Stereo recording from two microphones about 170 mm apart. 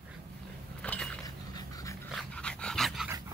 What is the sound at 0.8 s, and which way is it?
Mechanisms, 5° left (ahead or behind).